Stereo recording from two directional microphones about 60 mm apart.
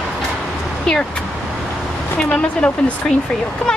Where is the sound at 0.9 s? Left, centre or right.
Centre.